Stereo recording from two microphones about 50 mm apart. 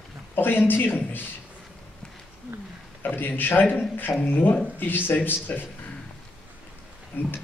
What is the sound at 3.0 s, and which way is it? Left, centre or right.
A man's voice, left.